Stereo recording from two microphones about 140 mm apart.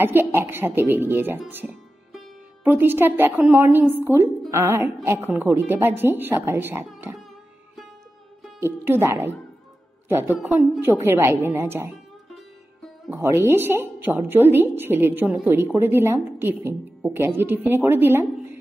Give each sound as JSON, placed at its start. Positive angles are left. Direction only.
{"t": 0.0, "sound": "a woman's voice", "side_deg": -15}
{"t": 8.5, "sound": "a woman's voice", "side_deg": -15}
{"t": 10.4, "sound": "a woman's voice", "side_deg": -5}
{"t": 13.1, "sound": "a woman's voice", "side_deg": -15}